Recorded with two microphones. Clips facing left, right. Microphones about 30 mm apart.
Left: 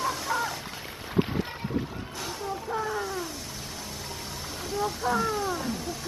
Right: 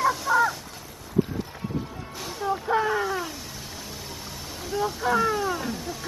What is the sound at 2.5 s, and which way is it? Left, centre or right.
Speech, right.